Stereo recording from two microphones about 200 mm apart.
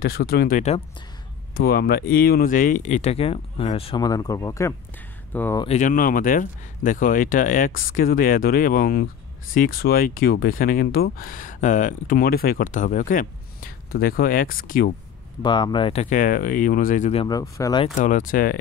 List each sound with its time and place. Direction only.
0.0 s speech: 50° left (ahead or behind)
1.5 s speech: 50° left (ahead or behind); by 5.6 s 10° left (ahead or behind)
5.6 s speech: 35° left (ahead or behind)
15.4 s speech: 20° left (ahead or behind)
17.3 s speech: 20° left (ahead or behind)
17.9 s speech: 40° left (ahead or behind)